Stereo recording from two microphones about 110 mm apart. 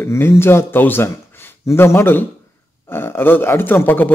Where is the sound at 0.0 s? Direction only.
25° left (ahead or behind).